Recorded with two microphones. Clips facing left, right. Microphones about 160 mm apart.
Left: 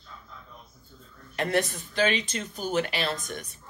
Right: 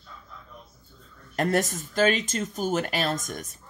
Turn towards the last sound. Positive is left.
turn(degrees=-45)  # may be behind; listen again after turning